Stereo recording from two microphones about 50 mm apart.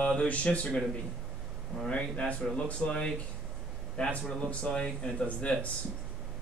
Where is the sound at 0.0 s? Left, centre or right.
Centre.